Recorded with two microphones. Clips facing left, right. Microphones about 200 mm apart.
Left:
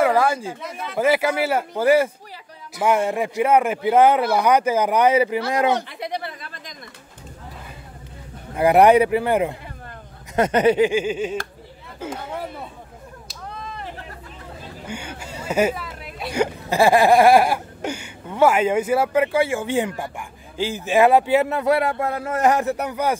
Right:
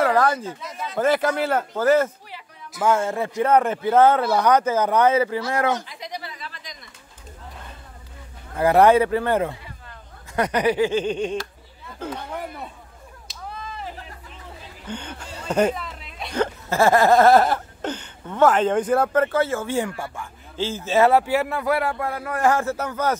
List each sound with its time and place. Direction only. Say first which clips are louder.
0.0 s speech: left 1 dB; 10° left (ahead or behind)
0.6 s speech: left 1 dB; 60° left (ahead or behind)
0.9 s speech: left 1 dB; 10° left (ahead or behind)
5.8 s a sound: left 6 dB; 60° left (ahead or behind)
8.5 s speech: left 2 dB; 15° left (ahead or behind)
10.3 s speech: left 4 dB; 25° left (ahead or behind)
10.9 s speech: left 1 dB; 10° left (ahead or behind)
13.3 s a sound: even; centre (ahead or behind)
14.9 s a sound: right 1 dB; 10° left (ahead or behind)
16.2 s hiccup: left 2 dB; 5° left (ahead or behind)
16.6 s speech: left 1 dB; 15° left (ahead or behind)